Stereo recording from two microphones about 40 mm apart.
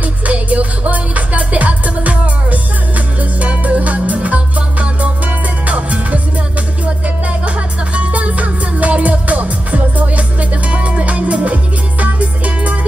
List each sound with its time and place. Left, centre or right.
0.0 s music: right
7.2 s music: right